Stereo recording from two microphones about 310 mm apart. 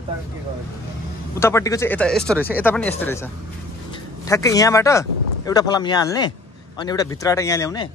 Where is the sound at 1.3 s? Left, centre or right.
Centre.